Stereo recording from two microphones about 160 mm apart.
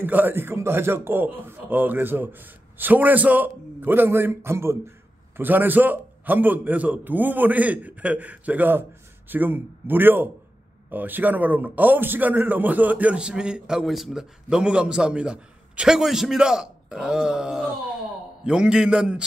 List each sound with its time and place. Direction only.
0.0 s a man's voice: 10° right (ahead or behind)